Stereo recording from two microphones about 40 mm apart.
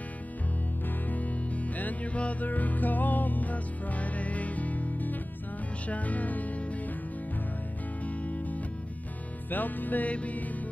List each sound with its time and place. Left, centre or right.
1.1 s music: left
9.5 s music: left
10.1 s music: left